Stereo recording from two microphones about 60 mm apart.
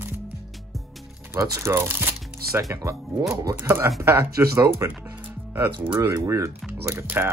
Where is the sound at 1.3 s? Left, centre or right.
Right.